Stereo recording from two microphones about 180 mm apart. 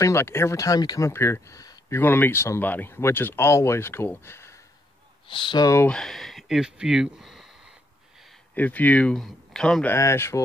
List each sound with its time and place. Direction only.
0.0 s speech: 15° left (ahead or behind)
5.3 s speech: 25° left (ahead or behind)
5.9 s speech: centre (ahead or behind)
9.9 s speech: 15° left (ahead or behind)